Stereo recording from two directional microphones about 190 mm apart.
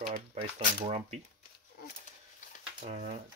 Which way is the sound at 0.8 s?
35° right (ahead or behind).